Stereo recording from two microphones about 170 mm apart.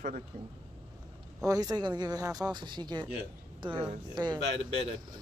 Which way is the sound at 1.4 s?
20° right (ahead or behind).